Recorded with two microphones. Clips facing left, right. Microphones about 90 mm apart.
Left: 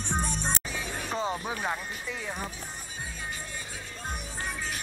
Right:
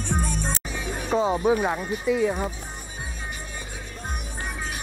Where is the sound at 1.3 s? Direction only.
15° right (ahead or behind).